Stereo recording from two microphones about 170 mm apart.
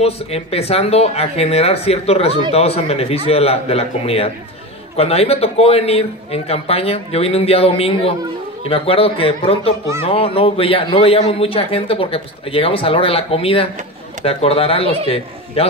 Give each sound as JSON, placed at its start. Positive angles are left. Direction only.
{"t": 0.0, "sound": "a man's voice", "side_deg": 35}